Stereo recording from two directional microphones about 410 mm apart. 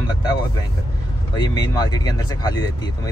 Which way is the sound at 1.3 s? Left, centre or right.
Centre.